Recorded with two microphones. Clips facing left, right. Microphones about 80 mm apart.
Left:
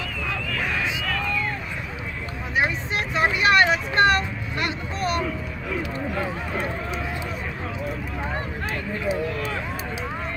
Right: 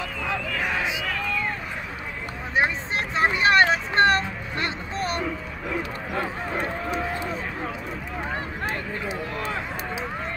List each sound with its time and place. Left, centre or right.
0.3 s a sound: right
3.2 s vehicle: right
6.1 s run: right